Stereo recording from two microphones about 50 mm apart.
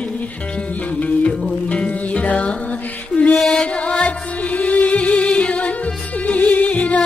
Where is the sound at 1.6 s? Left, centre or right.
Left.